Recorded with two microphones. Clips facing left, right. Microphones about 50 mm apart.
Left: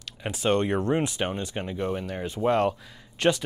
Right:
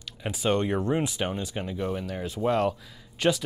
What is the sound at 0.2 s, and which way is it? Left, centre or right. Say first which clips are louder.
Speech: left 1 dB; centre.